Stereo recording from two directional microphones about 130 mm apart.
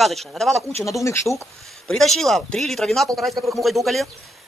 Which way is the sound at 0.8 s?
25° left (ahead or behind).